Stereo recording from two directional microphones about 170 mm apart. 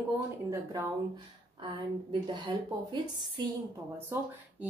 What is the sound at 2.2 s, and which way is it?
A woman's voice, 25° right (ahead or behind).